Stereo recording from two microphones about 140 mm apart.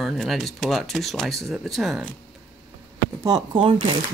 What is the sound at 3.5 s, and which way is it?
Speech, 40° right (ahead or behind).